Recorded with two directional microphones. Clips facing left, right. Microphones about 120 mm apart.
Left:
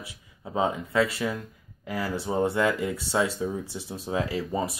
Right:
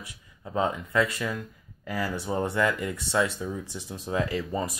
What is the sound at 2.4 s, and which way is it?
Speech, 15° left (ahead or behind).